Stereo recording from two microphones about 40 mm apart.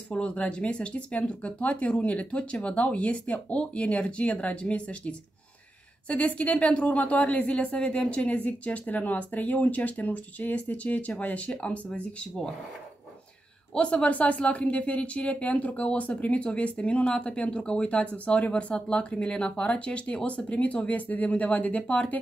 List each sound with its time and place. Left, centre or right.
0.1 s speech: left
13.7 s speech: left